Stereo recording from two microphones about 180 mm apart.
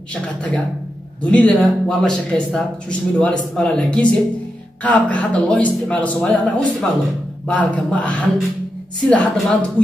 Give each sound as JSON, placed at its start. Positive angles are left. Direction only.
{"t": 0.1, "sound": "a man's voice", "side_deg": 5}